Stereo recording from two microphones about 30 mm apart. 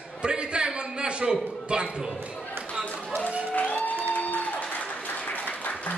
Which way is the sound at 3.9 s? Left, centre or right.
Left.